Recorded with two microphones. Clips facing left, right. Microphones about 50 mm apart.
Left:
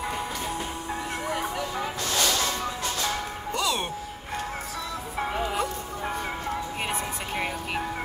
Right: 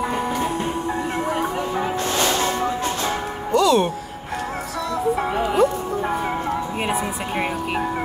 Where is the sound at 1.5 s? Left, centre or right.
Right.